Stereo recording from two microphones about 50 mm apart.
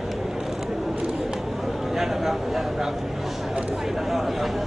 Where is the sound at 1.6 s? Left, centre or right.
Centre.